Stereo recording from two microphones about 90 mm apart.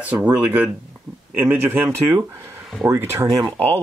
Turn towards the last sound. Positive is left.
turn(degrees=-40)  # may be behind; listen again after turning